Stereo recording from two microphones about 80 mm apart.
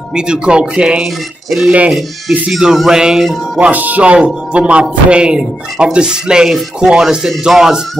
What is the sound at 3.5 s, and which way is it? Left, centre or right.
Speech, centre.